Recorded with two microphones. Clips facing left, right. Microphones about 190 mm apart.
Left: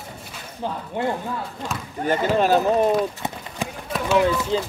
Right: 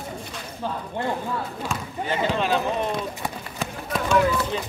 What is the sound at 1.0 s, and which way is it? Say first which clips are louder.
Speech: left 4 dB; 15° left (ahead or behind).